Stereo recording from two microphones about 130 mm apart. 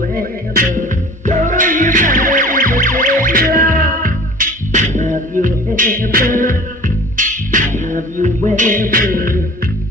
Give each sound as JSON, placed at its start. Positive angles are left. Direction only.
{"t": 0.1, "sound": "music", "side_deg": -90}
{"t": 7.8, "sound": "music", "side_deg": -70}